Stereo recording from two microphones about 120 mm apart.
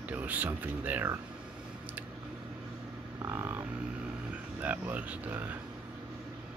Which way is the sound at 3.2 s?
20° right (ahead or behind).